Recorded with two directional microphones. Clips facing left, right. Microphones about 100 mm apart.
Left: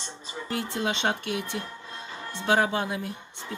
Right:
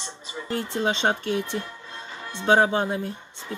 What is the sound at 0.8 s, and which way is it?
Speech, 35° right (ahead or behind).